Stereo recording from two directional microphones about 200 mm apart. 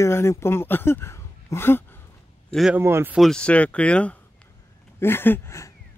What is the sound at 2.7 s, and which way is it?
Speech, 10° right (ahead or behind).